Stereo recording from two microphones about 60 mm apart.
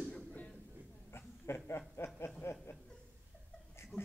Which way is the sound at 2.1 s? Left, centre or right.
Left.